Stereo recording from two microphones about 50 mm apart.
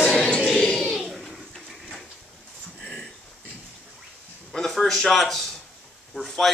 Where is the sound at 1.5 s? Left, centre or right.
Centre.